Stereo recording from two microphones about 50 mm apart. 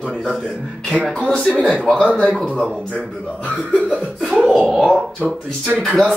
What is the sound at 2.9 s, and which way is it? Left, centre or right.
Speech, left.